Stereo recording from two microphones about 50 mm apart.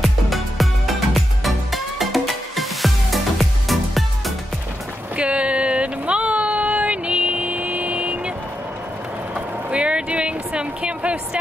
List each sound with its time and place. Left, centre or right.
0.0 s music: centre
5.1 s a sound: right
9.3 s vehicle: right